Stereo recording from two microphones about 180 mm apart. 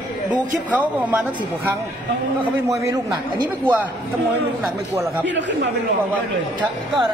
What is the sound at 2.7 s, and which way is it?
Speech, 15° right (ahead or behind).